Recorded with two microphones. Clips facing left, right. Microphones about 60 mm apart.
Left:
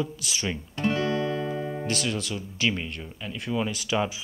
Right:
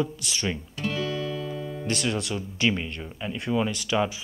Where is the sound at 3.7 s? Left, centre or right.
Centre.